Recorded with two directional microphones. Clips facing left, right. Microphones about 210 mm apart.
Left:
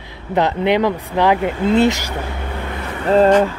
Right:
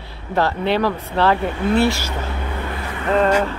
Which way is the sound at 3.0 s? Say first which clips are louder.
Left 5 dB; 30° left (ahead or behind).